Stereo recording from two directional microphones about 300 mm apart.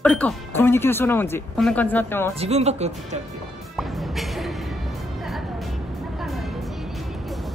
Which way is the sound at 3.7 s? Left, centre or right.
Centre.